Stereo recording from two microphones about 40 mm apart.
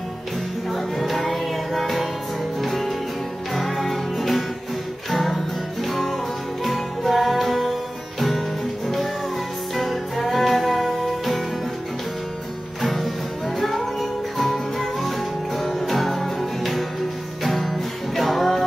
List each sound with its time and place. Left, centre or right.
0.7 s music: centre
8.8 s music: centre
12.8 s music: centre